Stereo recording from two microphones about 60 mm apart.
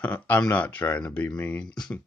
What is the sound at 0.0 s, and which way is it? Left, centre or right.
Speech, left.